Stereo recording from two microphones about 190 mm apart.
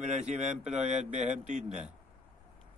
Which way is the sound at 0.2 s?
35° right (ahead or behind).